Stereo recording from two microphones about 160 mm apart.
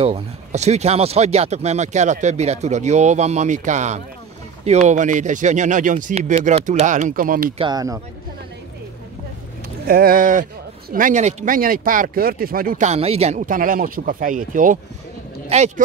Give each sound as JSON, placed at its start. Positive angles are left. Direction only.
{"t": 0.0, "sound": "speech", "side_deg": -40}
{"t": 7.5, "sound": "speech", "side_deg": -25}
{"t": 9.8, "sound": "speech", "side_deg": -65}
{"t": 13.5, "sound": "speech", "side_deg": -60}
{"t": 15.5, "sound": "speech", "side_deg": -40}